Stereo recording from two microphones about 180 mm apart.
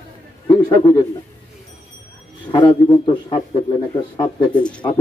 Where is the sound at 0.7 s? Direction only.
20° left (ahead or behind).